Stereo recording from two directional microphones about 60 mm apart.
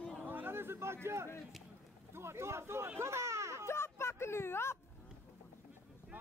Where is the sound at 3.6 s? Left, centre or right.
Left.